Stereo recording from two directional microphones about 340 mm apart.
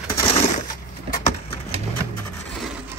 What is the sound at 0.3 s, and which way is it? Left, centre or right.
Crushing, left.